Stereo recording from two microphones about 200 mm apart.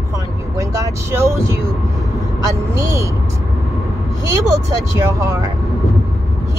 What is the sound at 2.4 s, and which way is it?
Speech, 15° right (ahead or behind).